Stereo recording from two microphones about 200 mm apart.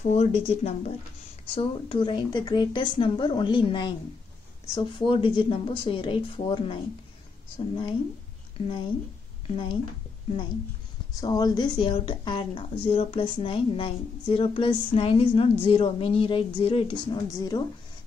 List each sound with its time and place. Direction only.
0.1 s a woman's voice: 30° left (ahead or behind)
11.1 s a woman's voice: 20° left (ahead or behind)